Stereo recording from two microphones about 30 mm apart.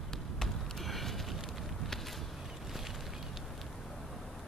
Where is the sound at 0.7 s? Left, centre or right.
Centre.